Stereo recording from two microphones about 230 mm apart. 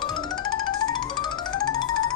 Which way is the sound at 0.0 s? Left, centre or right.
Centre.